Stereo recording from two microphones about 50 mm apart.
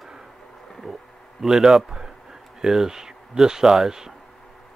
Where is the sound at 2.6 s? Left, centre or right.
Centre.